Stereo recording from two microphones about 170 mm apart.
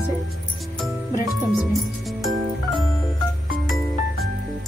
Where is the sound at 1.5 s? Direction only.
Centre (ahead or behind).